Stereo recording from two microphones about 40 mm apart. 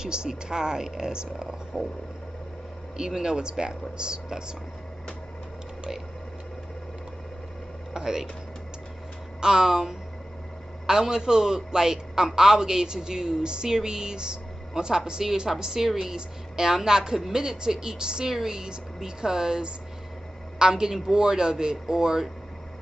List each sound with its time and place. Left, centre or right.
0.0 s speech: centre
3.0 s speech: centre
7.9 s speech: centre
9.4 s speech: centre